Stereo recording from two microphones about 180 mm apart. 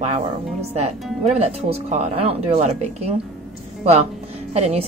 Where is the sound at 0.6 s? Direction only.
35° right (ahead or behind).